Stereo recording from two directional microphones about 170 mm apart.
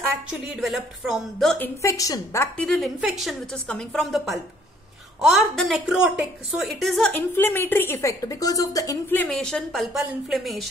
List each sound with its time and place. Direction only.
0.6 s a woman's voice: centre (ahead or behind)
1.8 s a woman's voice: 20° left (ahead or behind)
2.5 s a woman's voice: 5° left (ahead or behind); by 9.2 s 20° left (ahead or behind)
9.2 s a woman's voice: 5° left (ahead or behind)